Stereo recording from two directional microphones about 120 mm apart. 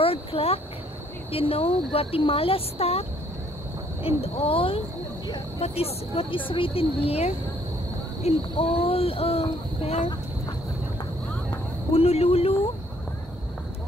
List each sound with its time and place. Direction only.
0.0 s speech: 55° left (ahead or behind)
5.6 s speech: 55° left (ahead or behind)
11.9 s speech: 55° left (ahead or behind)